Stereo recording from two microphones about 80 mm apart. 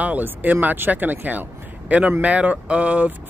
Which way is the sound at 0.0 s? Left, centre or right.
Right.